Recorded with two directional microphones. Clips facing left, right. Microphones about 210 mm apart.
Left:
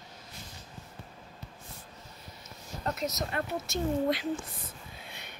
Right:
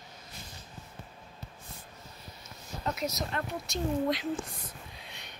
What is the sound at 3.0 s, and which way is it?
Speech, centre (ahead or behind).